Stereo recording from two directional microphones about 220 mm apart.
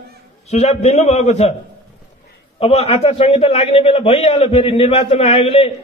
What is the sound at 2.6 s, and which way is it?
A man's voice, 25° left (ahead or behind).